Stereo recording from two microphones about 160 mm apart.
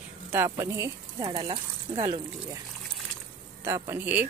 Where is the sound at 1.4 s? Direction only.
35° right (ahead or behind).